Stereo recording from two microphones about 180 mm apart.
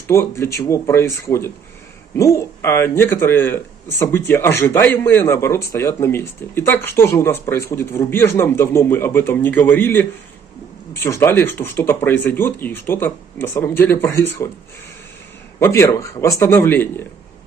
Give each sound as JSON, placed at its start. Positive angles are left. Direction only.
{"t": 0.1, "sound": "a man's voice", "side_deg": 15}
{"t": 15.6, "sound": "a man's voice", "side_deg": 15}